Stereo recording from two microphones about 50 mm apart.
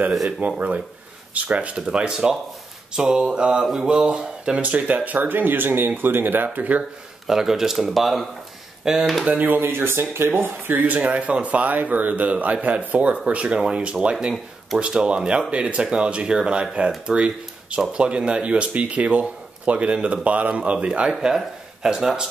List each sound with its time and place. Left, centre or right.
0.6 s speech: right
1.9 s speech: centre
4.6 s speech: right
7.2 s speech: centre
9.6 s speech: right
11.0 s speech: right